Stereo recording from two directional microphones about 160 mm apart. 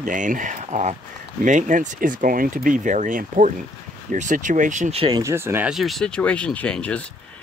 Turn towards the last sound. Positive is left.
turn(degrees=5)  # may be behind; listen again after turning